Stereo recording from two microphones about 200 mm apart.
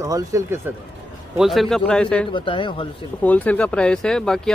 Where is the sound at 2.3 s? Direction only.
25° left (ahead or behind).